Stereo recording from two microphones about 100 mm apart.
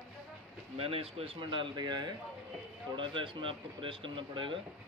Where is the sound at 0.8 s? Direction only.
75° right (ahead or behind).